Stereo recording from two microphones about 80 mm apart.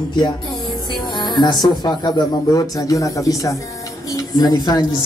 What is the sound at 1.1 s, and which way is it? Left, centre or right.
A woman's voice, left.